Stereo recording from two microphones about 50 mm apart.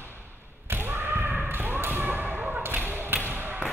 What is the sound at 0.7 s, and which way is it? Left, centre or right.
Thump, right.